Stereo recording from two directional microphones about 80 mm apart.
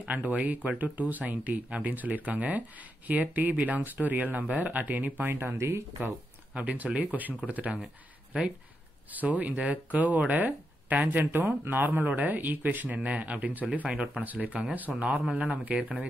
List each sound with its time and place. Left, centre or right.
0.0 s speech: centre
6.5 s speech: centre
7.8 s speech: centre
9.1 s speech: centre